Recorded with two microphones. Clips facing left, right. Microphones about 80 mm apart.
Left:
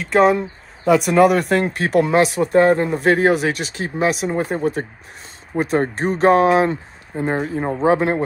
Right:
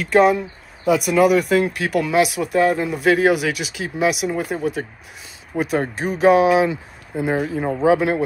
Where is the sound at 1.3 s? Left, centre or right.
Left.